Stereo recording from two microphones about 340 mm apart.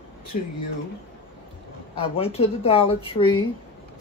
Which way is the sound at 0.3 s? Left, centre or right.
Left.